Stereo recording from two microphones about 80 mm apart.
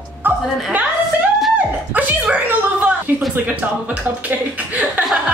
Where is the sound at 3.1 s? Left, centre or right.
Right.